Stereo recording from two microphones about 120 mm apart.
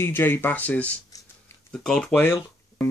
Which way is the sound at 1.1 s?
30° left (ahead or behind).